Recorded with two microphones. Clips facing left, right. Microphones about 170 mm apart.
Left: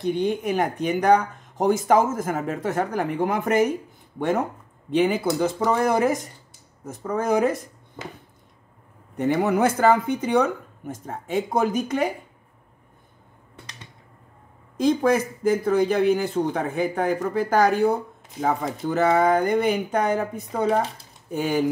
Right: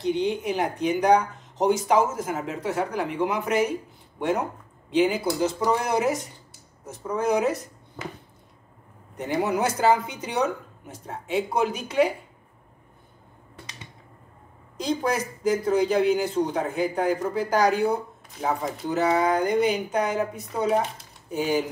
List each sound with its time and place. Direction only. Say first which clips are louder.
0.0 s a man's voice: left 1 dB; 50° left (ahead or behind)
4.9 s a man's voice: left 1 dB; 55° left (ahead or behind)
9.1 s speech: left 4 dB; 55° left (ahead or behind)
14.8 s a man's voice: left 6 dB; 55° left (ahead or behind)